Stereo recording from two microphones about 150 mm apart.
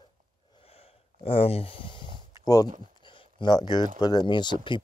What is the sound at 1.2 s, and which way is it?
Speech, 40° left (ahead or behind).